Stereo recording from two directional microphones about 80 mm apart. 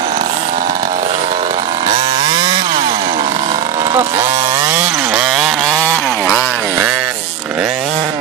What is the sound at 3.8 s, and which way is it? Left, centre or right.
Vehicle, right.